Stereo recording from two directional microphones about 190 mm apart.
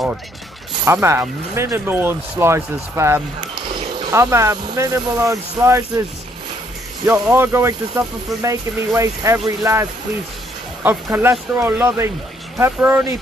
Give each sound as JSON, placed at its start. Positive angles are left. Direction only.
{"t": 1.0, "sound": "speech", "side_deg": -15}
{"t": 7.1, "sound": "speech", "side_deg": -10}